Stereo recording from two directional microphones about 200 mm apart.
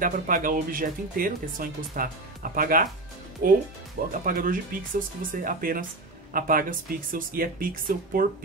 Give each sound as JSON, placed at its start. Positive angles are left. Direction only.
{"t": 0.0, "sound": "speech", "side_deg": -45}